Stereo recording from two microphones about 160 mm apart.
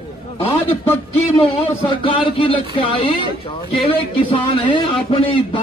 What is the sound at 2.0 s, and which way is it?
Speech, 35° left (ahead or behind).